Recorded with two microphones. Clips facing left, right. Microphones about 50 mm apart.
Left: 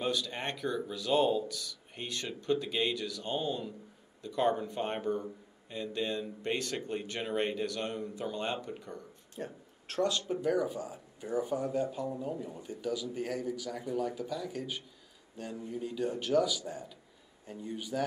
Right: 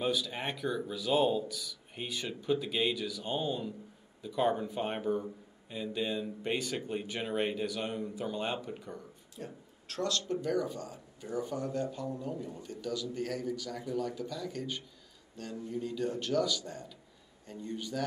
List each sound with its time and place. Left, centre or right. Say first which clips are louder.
0.0 s speech: right 1 dB; centre
9.3 s a sound: left 4 dB; left
10.0 s speech: left 1 dB; centre